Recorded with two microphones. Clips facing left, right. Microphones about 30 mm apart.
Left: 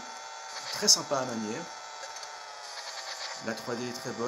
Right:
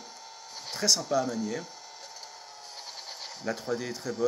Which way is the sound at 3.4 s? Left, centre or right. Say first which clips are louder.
Right 4 dB; centre.